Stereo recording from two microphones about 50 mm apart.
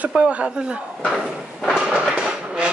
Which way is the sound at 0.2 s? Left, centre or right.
Right.